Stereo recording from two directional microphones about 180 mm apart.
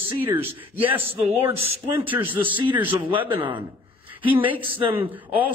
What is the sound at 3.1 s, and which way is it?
Speech, 30° right (ahead or behind).